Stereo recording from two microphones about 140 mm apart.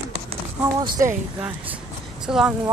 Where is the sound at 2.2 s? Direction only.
5° right (ahead or behind).